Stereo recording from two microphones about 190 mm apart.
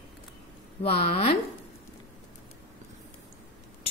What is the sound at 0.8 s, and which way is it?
Speech, 30° left (ahead or behind).